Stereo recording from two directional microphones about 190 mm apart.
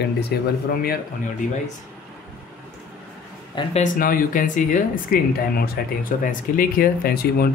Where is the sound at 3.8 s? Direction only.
45° left (ahead or behind).